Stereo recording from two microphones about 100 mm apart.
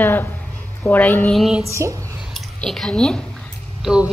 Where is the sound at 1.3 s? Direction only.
Centre (ahead or behind).